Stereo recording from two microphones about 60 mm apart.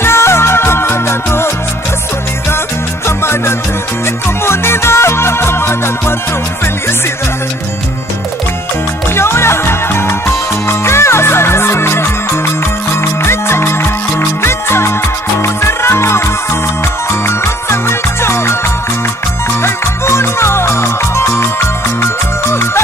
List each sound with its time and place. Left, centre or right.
0.0 s music: left
3.1 s music: left
9.1 s music: left
17.3 s music: left
19.6 s music: left